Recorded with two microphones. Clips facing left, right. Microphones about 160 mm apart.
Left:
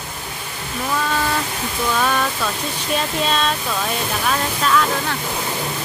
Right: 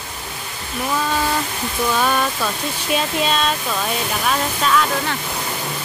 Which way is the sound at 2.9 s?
5° right (ahead or behind).